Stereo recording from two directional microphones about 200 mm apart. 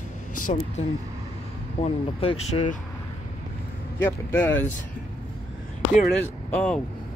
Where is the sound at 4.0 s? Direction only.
10° left (ahead or behind).